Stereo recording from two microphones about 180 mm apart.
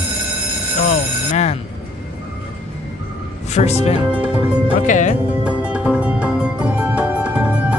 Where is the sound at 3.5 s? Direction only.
35° left (ahead or behind).